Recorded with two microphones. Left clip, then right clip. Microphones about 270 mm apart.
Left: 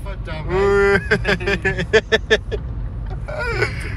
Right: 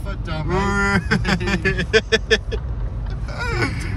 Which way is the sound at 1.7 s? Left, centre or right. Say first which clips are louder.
Left 1 dB; left.